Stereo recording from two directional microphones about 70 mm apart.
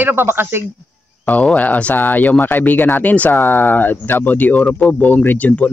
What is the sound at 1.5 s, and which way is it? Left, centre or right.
Speech, left.